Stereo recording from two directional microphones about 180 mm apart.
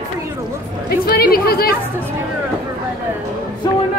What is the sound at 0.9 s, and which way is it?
Speech, 60° left (ahead or behind).